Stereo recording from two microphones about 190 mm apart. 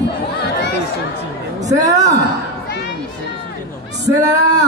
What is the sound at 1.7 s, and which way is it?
Speech, 20° right (ahead or behind).